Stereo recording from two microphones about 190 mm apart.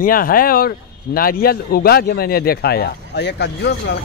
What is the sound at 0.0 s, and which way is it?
A man's voice, 50° left (ahead or behind).